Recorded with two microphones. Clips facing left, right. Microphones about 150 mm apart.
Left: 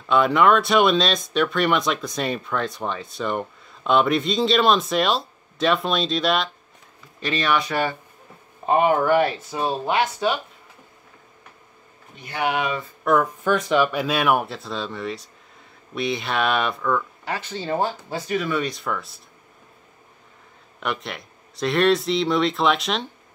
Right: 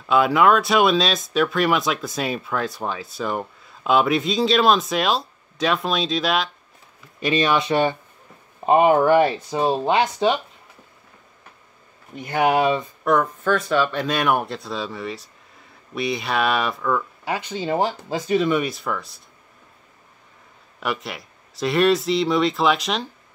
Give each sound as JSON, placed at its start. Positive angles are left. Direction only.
{"t": 0.1, "sound": "speech", "side_deg": -5}
{"t": 7.2, "sound": "speech", "side_deg": -15}
{"t": 12.3, "sound": "speech", "side_deg": -45}
{"t": 13.0, "sound": "speech", "side_deg": 0}
{"t": 13.4, "sound": "speech", "side_deg": 15}
{"t": 14.0, "sound": "speech", "side_deg": 5}
{"t": 17.2, "sound": "speech", "side_deg": -15}
{"t": 18.6, "sound": "speech", "side_deg": 0}
{"t": 20.8, "sound": "speech", "side_deg": -5}